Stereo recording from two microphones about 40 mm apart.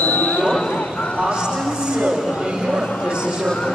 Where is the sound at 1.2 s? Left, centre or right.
Centre.